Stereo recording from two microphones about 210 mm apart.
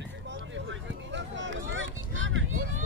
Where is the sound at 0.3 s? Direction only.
60° right (ahead or behind).